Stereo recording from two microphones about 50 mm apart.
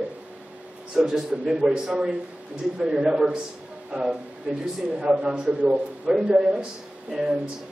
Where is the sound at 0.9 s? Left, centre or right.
Centre.